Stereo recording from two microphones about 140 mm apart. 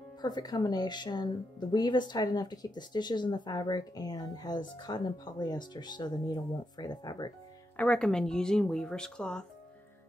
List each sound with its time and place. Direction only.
0.2 s speech: 30° left (ahead or behind)
7.7 s speech: 10° left (ahead or behind)